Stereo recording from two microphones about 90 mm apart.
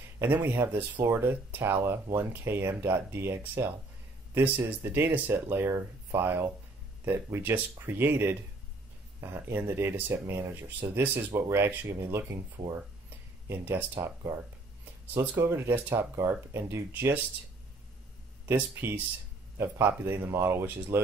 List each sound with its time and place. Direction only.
0.2 s speech: 25° right (ahead or behind)
13.5 s speech: 25° right (ahead or behind)
15.1 s speech: 30° right (ahead or behind)
18.4 s speech: 25° right (ahead or behind)